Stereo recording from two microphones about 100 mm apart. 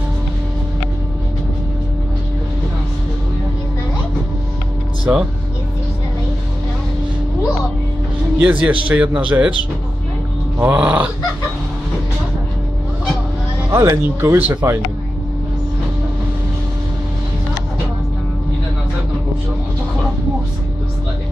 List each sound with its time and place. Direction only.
5.1 s speech: 15° right (ahead or behind)
8.4 s speech: 15° right (ahead or behind)
10.6 s speech: 15° right (ahead or behind)
13.7 s speech: 30° right (ahead or behind)